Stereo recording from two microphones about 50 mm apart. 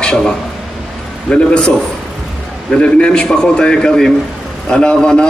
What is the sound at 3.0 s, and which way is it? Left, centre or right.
A man's voice, centre.